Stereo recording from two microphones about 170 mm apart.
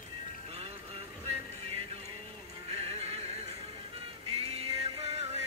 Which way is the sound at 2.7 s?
35° right (ahead or behind).